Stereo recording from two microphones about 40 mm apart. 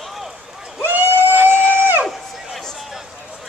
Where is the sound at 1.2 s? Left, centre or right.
Right.